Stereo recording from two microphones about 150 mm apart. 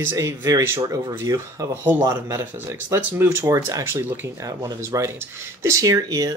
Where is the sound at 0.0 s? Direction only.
15° right (ahead or behind).